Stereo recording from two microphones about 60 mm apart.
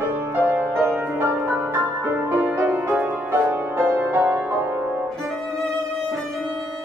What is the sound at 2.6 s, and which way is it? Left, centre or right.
Music, right.